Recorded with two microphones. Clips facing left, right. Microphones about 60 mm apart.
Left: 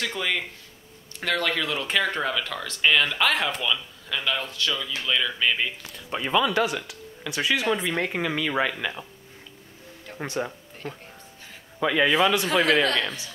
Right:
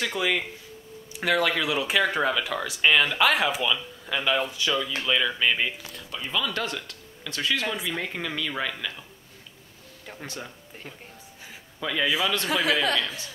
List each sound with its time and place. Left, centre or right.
0.0 s speech: centre
6.5 s speech: centre
8.1 s speech: centre
10.1 s speech: left
10.8 s speech: centre
11.8 s speech: left
12.4 s speech: centre